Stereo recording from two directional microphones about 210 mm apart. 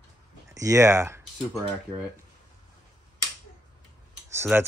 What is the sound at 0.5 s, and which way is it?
Speech, 15° right (ahead or behind).